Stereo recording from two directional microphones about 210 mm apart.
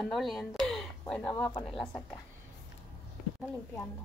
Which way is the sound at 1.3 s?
15° left (ahead or behind).